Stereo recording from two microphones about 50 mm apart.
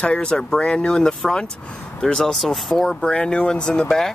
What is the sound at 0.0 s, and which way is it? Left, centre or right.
Speech, left.